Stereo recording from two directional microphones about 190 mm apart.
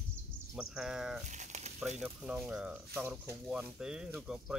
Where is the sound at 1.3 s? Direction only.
40° right (ahead or behind).